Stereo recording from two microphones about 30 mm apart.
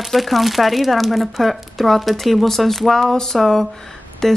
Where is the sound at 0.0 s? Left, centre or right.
Centre.